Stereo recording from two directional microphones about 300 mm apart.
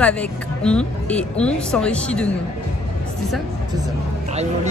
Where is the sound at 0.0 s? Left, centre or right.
Centre.